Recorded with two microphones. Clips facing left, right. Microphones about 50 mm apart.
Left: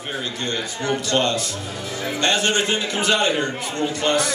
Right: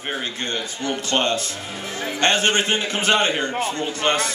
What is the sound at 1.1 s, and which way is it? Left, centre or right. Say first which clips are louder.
A man's voice: right 1 dB; right.